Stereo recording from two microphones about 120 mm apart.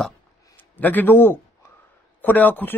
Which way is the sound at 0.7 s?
15° left (ahead or behind).